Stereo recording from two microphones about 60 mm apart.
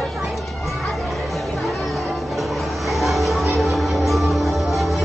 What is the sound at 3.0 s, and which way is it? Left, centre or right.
Music, centre.